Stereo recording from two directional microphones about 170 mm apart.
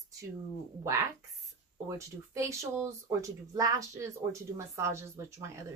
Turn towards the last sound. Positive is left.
turn(degrees=-15)  # may be behind; listen again after turning